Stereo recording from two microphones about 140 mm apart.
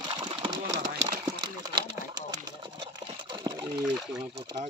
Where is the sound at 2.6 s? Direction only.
35° right (ahead or behind).